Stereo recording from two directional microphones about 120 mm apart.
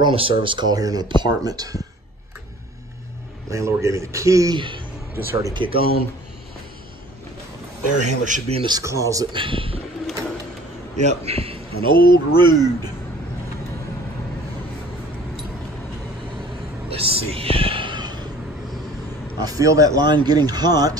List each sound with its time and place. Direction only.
0.0 s speech: 45° right (ahead or behind); by 1.8 s 30° right (ahead or behind)
3.4 s a man's voice: 25° right (ahead or behind)
4.6 s a man's voice: 45° right (ahead or behind)
5.1 s a man's voice: 20° right (ahead or behind)
5.5 s a man's voice: 40° right (ahead or behind)
8.0 s a man's voice: 75° right (ahead or behind)
8.6 s a man's voice: 30° right (ahead or behind)
9.3 s a man's voice: 45° right (ahead or behind)
11.0 s a man's voice: 65° right (ahead or behind); by 12.9 s 35° right (ahead or behind)
16.9 s a sound: 55° right (ahead or behind); by 18.3 s 35° right (ahead or behind)
19.4 s speech: 30° right (ahead or behind)